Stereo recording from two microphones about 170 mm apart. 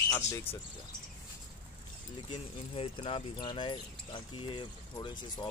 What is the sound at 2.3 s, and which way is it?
Speech, 35° left (ahead or behind).